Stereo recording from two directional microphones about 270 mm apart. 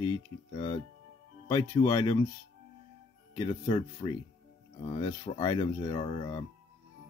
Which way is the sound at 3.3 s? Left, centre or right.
Centre.